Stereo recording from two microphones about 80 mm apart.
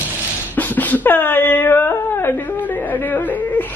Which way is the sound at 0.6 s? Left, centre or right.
Left.